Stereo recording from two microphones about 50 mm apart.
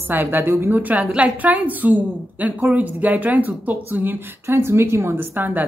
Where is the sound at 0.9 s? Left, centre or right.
Right.